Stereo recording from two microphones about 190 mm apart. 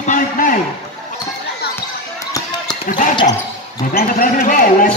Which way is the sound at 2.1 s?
15° left (ahead or behind).